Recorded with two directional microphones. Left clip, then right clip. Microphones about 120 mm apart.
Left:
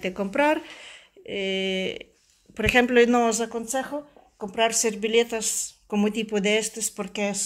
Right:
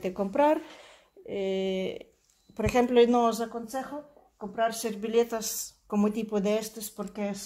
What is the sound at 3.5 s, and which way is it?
Speech, 50° left (ahead or behind).